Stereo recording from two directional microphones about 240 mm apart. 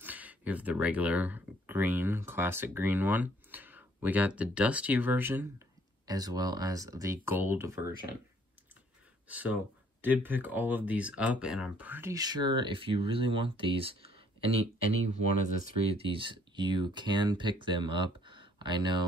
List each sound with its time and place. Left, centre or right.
0.0 s speech: centre
9.3 s speech: centre; by 14.2 s right
15.2 s speech: left
16.0 s speech: right